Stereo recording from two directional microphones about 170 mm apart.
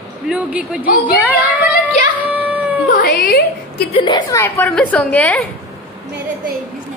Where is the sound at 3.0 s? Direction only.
65° left (ahead or behind).